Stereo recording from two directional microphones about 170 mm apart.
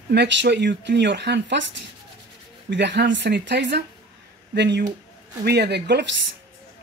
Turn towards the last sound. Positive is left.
turn(degrees=-80)